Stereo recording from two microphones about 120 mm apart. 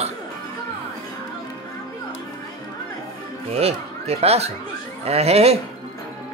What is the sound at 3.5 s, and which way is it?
Speech, 60° right (ahead or behind).